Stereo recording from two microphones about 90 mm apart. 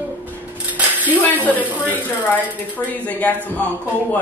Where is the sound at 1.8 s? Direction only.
20° left (ahead or behind).